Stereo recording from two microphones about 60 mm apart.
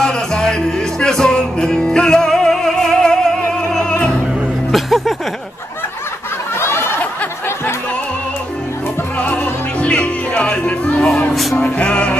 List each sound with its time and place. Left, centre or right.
0.0 s music: centre
4.7 s music: centre
6.6 s a sound: left
9.2 s music: left